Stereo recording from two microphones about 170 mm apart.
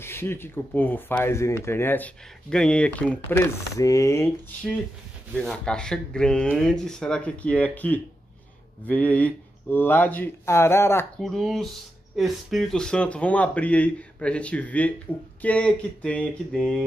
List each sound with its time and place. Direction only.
0.0 s speech: 15° left (ahead or behind)
5.3 s speech: 5° left (ahead or behind)
11.1 s speech: centre (ahead or behind)